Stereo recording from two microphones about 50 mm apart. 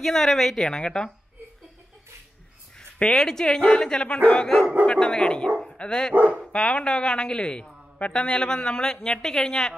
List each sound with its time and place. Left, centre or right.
0.0 s a woman's voice: centre
3.1 s a woman's voice: centre
6.1 s speech: right
6.5 s a woman's voice: centre